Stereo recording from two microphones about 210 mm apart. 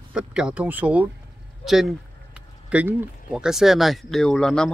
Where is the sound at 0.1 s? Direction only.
5° right (ahead or behind).